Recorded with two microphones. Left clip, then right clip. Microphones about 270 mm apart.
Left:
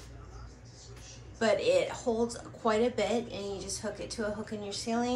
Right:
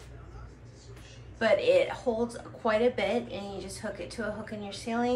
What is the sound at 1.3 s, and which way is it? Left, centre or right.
A woman's voice, centre.